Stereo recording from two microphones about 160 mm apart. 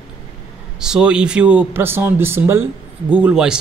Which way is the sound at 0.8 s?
5° right (ahead or behind).